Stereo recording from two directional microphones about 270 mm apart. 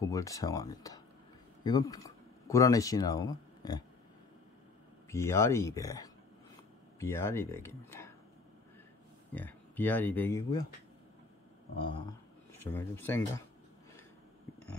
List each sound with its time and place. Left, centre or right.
0.0 s speech: centre
5.1 s speech: centre
9.3 s speech: centre
11.8 s a sound: centre
12.6 s speech: centre